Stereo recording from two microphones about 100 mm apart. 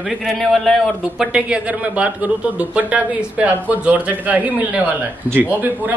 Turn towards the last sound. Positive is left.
turn(degrees=-15)  # may be behind; listen again after turning